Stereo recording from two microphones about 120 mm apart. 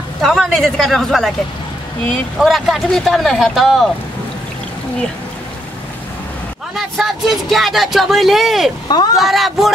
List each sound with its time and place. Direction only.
0.2 s speech: 5° left (ahead or behind)
6.7 s speech: centre (ahead or behind)
8.8 s speech: 35° left (ahead or behind)
9.1 s speech: centre (ahead or behind)